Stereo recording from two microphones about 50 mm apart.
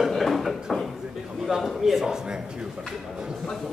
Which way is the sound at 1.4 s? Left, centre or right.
Centre.